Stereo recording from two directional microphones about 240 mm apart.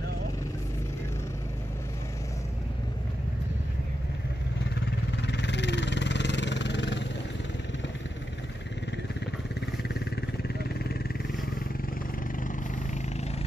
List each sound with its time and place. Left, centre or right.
5.2 s vehicle: left